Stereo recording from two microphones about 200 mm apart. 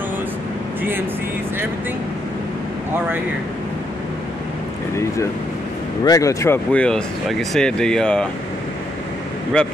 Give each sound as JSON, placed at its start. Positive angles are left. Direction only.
{"t": 4.9, "sound": "speech", "side_deg": 15}